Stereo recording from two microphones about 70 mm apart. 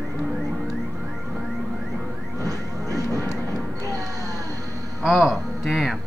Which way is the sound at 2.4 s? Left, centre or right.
Right.